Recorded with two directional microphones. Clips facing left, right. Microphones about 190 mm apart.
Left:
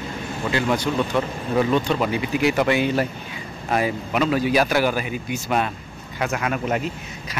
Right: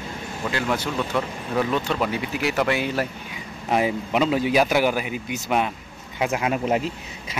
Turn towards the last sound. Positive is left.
turn(degrees=-25)  # may be behind; listen again after turning